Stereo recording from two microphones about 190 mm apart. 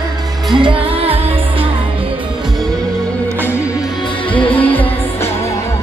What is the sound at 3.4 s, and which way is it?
Music, 15° left (ahead or behind).